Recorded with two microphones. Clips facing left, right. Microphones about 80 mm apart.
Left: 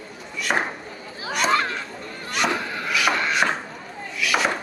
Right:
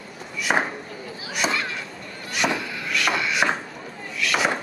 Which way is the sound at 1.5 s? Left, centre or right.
Left.